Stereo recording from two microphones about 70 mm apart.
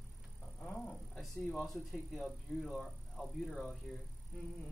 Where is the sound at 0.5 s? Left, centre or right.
Centre.